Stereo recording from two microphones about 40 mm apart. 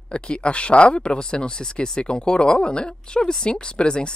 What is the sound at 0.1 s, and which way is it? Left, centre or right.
Speech, left.